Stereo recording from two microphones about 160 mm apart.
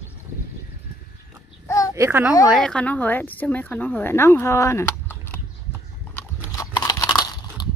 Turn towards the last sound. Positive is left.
turn(degrees=25)  # may be behind; listen again after turning